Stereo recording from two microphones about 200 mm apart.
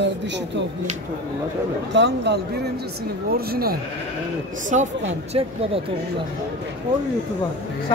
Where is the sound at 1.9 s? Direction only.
60° right (ahead or behind).